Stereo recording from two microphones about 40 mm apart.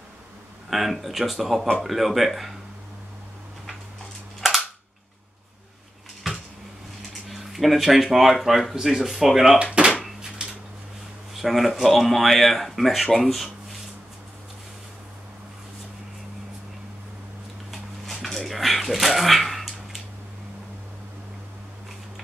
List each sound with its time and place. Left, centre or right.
0.7 s speech: centre
4.4 s cap gun: centre
6.2 s dishes: centre
7.2 s speech: centre
10.4 s a sound: right
11.3 s speech: centre
17.6 s a sound: centre